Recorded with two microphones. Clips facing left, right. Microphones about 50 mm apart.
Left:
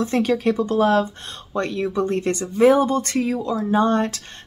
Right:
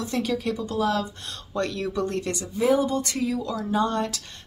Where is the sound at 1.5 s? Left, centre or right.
Left.